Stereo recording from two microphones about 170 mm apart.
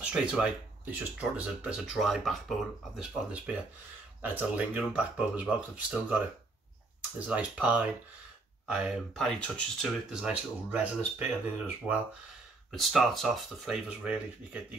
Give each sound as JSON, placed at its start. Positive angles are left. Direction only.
{"t": 0.0, "sound": "speech", "side_deg": -5}
{"t": 12.7, "sound": "speech", "side_deg": 0}